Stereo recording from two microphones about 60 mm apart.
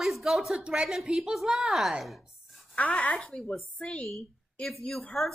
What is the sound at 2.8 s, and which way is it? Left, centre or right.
Speech, left.